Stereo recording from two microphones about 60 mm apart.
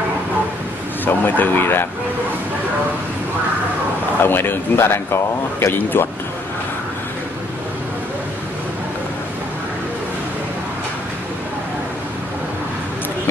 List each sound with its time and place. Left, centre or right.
1.0 s a man's voice: left
4.2 s a man's voice: left